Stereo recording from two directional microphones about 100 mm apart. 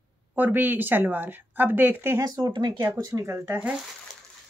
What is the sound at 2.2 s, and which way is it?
Speech, 40° right (ahead or behind).